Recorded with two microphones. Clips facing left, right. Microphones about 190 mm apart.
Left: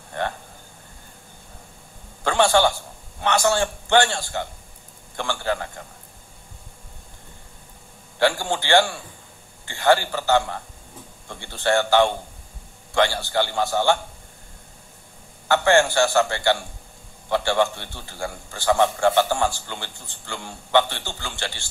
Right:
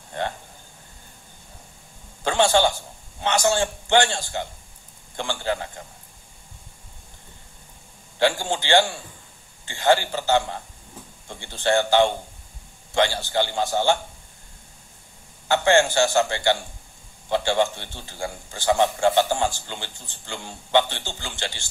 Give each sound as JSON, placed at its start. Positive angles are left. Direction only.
{"t": 2.2, "sound": "a man's voice", "side_deg": -20}
{"t": 8.2, "sound": "a man's voice", "side_deg": -20}
{"t": 15.4, "sound": "a man's voice", "side_deg": -15}